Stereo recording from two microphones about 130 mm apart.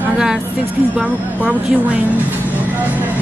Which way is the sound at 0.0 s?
5° right (ahead or behind).